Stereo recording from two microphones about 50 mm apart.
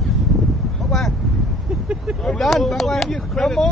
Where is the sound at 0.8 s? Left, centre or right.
Centre.